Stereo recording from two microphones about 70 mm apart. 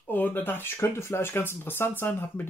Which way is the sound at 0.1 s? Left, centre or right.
Left.